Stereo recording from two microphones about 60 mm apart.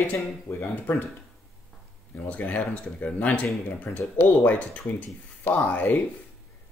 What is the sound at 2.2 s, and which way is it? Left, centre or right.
Speech, left.